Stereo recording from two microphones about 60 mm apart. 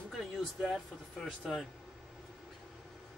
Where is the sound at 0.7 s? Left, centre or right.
Centre.